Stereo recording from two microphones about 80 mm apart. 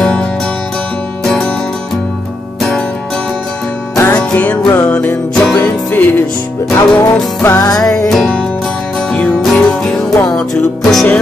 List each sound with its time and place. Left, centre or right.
0.0 s music: centre
4.1 s music: left
5.3 s music: centre
5.6 s music: left
7.6 s music: left
8.1 s music: centre